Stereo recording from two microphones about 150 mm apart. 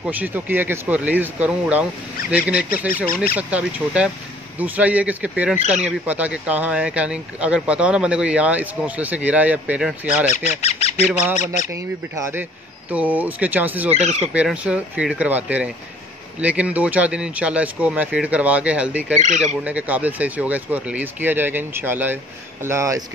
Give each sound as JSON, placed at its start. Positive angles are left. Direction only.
{"t": 0.0, "sound": "speech", "side_deg": -10}
{"t": 10.0, "sound": "speech", "side_deg": 55}
{"t": 11.3, "sound": "speech", "side_deg": 55}
{"t": 11.7, "sound": "speech", "side_deg": -15}
{"t": 19.1, "sound": "speech", "side_deg": -55}
{"t": 19.4, "sound": "speech", "side_deg": -10}